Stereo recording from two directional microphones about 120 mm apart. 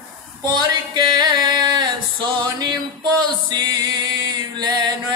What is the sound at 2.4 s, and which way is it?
Male singing, 35° right (ahead or behind).